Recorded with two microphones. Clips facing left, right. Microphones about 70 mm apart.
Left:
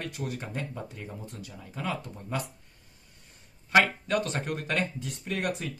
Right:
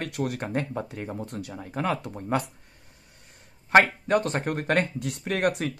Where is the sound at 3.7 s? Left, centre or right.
Right.